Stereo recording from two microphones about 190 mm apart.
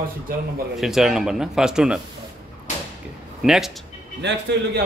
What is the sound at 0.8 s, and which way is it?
A man's voice, centre (ahead or behind).